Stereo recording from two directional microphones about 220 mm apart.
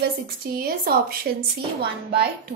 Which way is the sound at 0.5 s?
40° right (ahead or behind).